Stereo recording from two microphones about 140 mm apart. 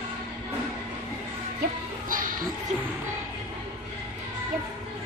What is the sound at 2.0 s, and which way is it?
Music, 75° right (ahead or behind).